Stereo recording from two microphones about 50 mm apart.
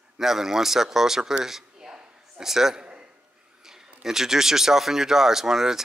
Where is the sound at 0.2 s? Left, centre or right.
Centre.